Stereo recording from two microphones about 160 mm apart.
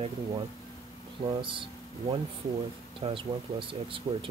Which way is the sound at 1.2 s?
30° right (ahead or behind).